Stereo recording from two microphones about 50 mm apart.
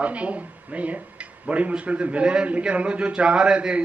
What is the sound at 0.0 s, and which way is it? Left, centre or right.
A man's voice, right.